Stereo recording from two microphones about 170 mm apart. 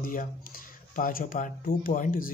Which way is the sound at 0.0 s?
55° left (ahead or behind).